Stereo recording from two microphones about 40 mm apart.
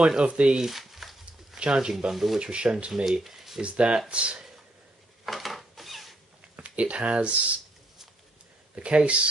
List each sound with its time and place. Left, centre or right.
0.2 s speech: right
0.6 s a sound: centre
1.6 s speech: centre
3.1 s speech: centre
3.6 s speech: right
5.2 s a sound: centre
6.5 s speech: right
8.7 s speech: right